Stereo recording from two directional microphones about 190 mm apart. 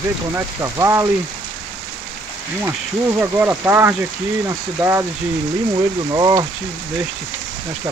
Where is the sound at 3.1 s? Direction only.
10° right (ahead or behind).